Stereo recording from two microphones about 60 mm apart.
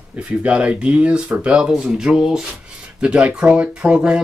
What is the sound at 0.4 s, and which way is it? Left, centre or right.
Speech, centre.